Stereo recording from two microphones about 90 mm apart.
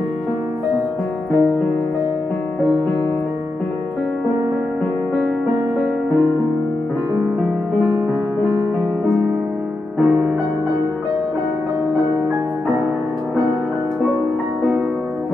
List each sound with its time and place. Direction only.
10.0 s music: 20° right (ahead or behind)